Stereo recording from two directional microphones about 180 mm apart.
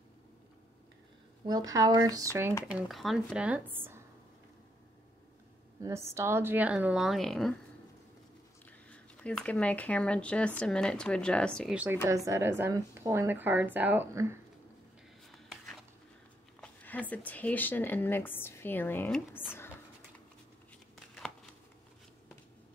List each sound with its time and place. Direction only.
1.7 s speech: 20° right (ahead or behind)
2.7 s a woman's voice: centre (ahead or behind)
5.8 s a woman's voice: 15° right (ahead or behind); by 7.5 s centre (ahead or behind)
8.6 s speech: 5° left (ahead or behind)
11.7 s a woman's voice: 10° right (ahead or behind)
15.2 s a sound: centre (ahead or behind)
16.6 s speech: 10° left (ahead or behind)